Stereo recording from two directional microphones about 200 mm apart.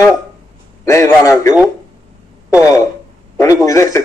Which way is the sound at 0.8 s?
15° left (ahead or behind).